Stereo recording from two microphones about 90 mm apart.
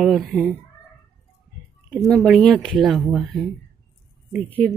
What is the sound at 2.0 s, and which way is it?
Speech, 5° left (ahead or behind).